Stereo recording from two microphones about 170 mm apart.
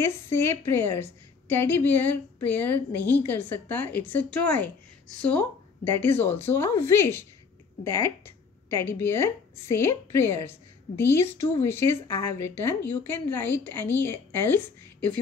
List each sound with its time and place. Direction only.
0.0 s a woman's voice: 15° left (ahead or behind)